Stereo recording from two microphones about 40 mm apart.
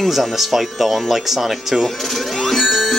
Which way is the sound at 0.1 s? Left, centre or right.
Centre.